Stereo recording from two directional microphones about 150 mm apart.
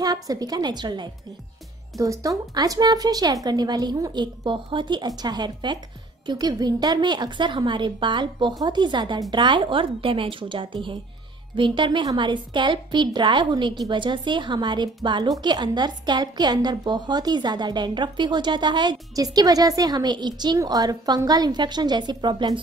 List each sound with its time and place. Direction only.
0.0 s a woman's voice: 25° right (ahead or behind)